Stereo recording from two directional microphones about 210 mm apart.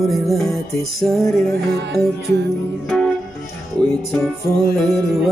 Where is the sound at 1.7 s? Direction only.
50° right (ahead or behind).